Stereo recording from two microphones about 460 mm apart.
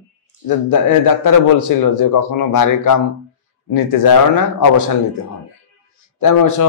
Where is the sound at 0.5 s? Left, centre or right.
Left.